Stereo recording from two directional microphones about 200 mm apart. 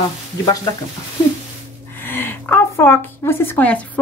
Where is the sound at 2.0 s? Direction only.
10° left (ahead or behind).